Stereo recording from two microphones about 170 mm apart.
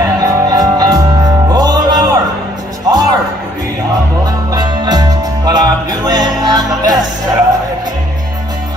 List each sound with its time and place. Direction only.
0.2 s music: 20° right (ahead or behind)
4.5 s music: 25° right (ahead or behind)